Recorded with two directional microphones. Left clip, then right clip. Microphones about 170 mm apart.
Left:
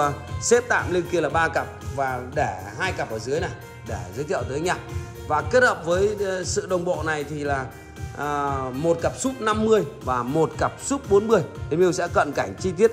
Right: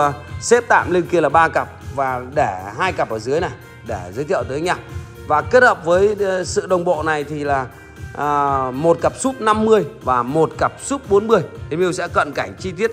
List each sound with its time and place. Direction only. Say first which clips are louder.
0.0 s speech: right 5 dB; 5° left (ahead or behind)
8.2 s speech: right 8 dB; 5° left (ahead or behind); by 12.9 s 20° left (ahead or behind)